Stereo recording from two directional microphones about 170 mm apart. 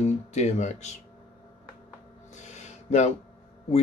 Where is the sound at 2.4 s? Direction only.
40° left (ahead or behind).